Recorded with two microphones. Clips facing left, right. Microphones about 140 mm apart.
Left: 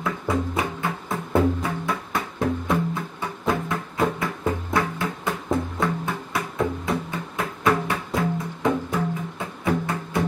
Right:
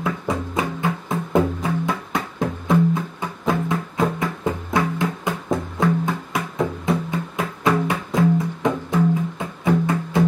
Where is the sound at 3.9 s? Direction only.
20° right (ahead or behind).